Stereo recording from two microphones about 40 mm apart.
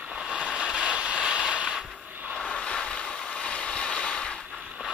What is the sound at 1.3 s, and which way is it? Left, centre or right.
Mechanisms, right.